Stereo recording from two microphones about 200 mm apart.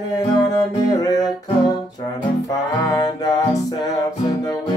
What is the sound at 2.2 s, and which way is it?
Music, 20° left (ahead or behind).